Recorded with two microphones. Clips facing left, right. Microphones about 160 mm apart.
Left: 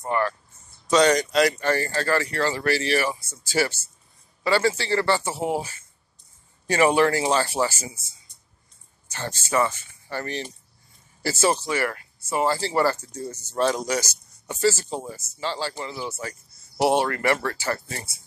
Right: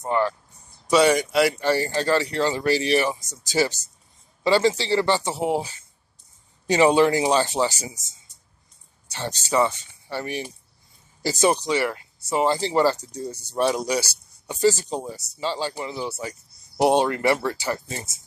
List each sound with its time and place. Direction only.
0.0 s speech: 20° right (ahead or behind)
9.1 s speech: 15° right (ahead or behind)